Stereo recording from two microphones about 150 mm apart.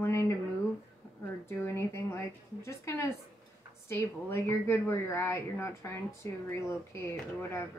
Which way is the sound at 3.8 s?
15° left (ahead or behind).